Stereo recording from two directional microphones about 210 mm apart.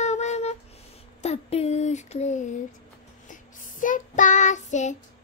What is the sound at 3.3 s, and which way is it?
Child singing, 40° left (ahead or behind).